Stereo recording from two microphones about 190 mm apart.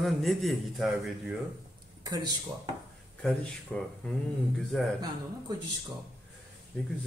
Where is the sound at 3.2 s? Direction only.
5° left (ahead or behind).